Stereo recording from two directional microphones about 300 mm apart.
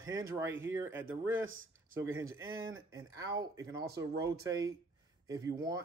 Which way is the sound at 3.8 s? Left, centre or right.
Right.